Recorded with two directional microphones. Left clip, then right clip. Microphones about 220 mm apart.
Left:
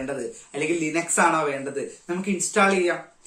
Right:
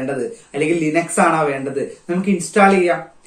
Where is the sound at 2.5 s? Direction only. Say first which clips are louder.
Right 7 dB; 15° left (ahead or behind).